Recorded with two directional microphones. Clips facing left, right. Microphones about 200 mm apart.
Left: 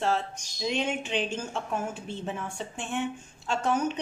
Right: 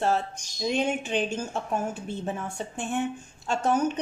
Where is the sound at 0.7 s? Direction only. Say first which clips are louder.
Right 3 dB; 40° right (ahead or behind).